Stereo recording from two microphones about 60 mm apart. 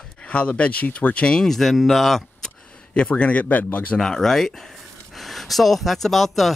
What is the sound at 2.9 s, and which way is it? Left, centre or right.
Speech, centre.